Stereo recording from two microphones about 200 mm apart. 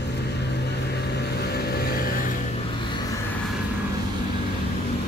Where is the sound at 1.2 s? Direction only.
55° left (ahead or behind).